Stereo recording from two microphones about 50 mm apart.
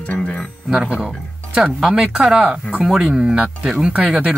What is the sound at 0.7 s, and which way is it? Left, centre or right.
Speech, centre.